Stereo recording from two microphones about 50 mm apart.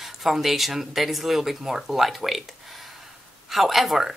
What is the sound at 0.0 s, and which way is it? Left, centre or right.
Speech, centre.